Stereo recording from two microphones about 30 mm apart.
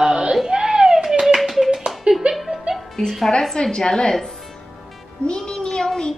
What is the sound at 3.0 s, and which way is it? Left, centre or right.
A woman's voice, left.